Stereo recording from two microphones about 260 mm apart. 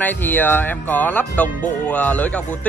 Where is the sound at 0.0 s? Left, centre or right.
Centre.